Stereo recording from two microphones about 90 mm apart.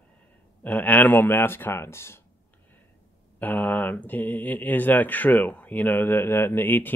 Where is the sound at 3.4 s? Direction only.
20° left (ahead or behind).